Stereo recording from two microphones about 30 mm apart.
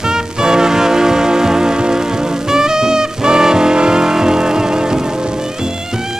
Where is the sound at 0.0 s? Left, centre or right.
Right.